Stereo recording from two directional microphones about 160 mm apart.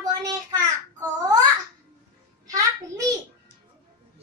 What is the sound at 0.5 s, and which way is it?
Child singing, 25° right (ahead or behind).